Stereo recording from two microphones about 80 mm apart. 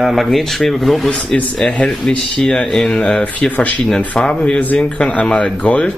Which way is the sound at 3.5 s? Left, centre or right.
Centre.